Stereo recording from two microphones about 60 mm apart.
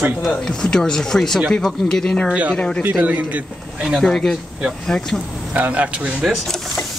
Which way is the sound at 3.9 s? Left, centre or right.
Centre.